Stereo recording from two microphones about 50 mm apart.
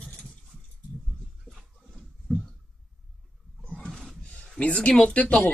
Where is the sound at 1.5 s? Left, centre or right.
Centre.